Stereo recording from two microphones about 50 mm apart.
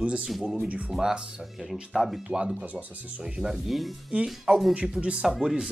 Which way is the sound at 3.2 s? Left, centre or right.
Centre.